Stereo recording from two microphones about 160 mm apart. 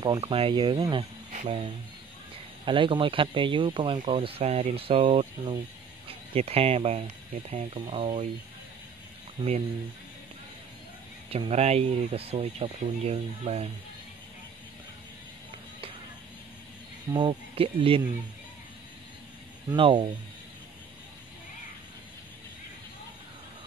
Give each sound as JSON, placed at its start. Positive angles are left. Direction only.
{"t": 0.2, "sound": "speech", "side_deg": -35}
{"t": 11.2, "sound": "speech", "side_deg": -35}
{"t": 17.1, "sound": "speech", "side_deg": -30}
{"t": 19.7, "sound": "speech", "side_deg": -30}